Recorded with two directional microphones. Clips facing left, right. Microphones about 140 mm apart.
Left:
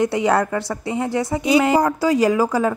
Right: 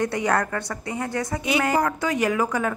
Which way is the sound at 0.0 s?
20° left (ahead or behind).